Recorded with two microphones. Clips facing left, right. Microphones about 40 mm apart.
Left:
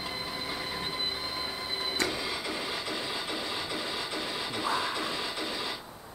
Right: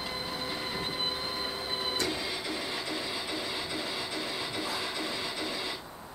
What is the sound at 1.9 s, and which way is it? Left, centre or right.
Music, centre.